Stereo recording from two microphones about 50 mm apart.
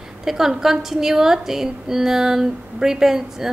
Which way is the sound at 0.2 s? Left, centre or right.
Centre.